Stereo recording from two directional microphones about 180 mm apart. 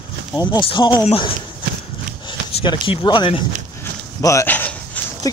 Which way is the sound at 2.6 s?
25° left (ahead or behind).